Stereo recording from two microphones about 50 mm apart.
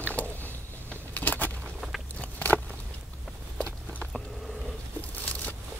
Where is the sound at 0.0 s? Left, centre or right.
Left.